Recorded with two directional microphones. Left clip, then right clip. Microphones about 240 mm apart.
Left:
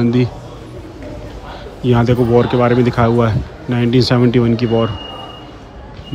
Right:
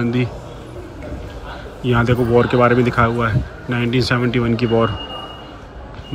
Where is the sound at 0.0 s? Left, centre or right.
Centre.